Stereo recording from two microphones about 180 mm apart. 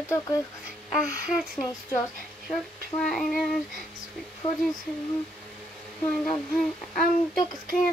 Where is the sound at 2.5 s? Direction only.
5° left (ahead or behind).